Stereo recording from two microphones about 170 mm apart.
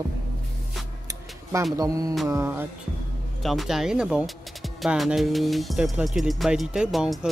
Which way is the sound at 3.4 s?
Centre (ahead or behind).